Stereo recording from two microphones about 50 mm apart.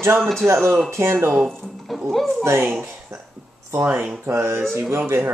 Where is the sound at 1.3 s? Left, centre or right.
Centre.